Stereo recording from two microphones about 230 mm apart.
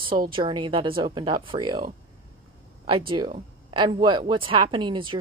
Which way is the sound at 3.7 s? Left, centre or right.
Centre.